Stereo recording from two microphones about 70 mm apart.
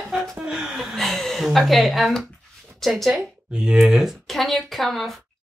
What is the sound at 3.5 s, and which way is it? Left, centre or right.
Speech, centre.